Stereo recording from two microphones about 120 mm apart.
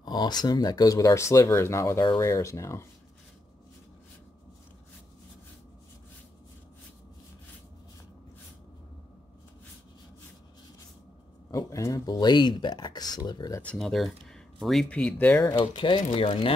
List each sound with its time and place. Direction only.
0.0 s speech: 35° left (ahead or behind)
11.5 s speech: 25° left (ahead or behind)
13.6 s speech: 10° left (ahead or behind)
15.5 s speech: 40° left (ahead or behind)